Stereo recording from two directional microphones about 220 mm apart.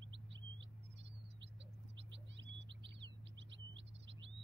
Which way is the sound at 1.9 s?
55° right (ahead or behind).